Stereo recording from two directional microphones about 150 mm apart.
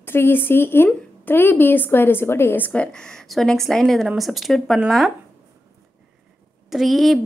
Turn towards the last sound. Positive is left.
turn(degrees=0)  # may be behind; listen again after turning